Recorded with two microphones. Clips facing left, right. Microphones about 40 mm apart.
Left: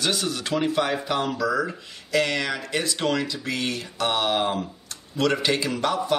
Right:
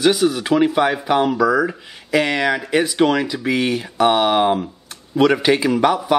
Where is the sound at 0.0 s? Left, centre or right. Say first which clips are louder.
Right 10 dB; centre.